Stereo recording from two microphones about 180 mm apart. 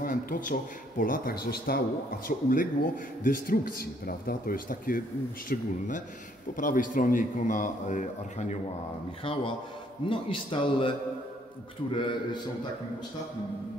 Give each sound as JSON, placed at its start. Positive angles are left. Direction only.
{"t": 0.0, "sound": "a man's voice", "side_deg": 50}
{"t": 9.2, "sound": "speech", "side_deg": 30}